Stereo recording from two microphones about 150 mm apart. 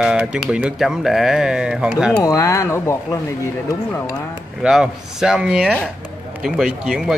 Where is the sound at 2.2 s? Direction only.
20° left (ahead or behind).